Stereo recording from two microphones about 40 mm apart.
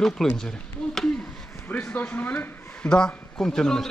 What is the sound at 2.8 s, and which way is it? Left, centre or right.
Speech, centre.